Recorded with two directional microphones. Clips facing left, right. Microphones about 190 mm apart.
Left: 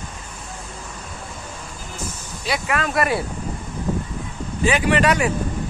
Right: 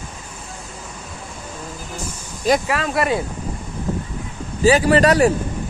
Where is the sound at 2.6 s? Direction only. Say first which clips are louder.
Right 1 dB; 25° right (ahead or behind).